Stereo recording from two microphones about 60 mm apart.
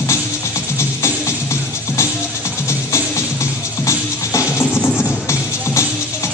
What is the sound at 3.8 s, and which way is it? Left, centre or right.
Music, left.